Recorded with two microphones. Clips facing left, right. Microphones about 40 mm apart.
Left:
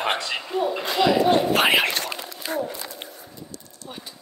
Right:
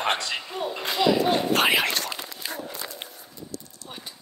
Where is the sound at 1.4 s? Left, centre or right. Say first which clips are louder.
Left 2 dB; centre.